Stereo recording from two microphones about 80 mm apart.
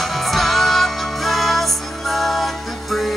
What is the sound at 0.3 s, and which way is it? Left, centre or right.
Music, centre.